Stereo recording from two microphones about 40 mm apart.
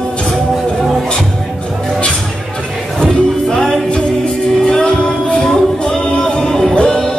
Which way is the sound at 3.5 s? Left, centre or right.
Centre.